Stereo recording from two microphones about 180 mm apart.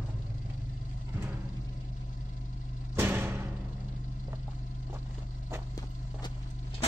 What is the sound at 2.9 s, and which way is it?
Music, 10° right (ahead or behind).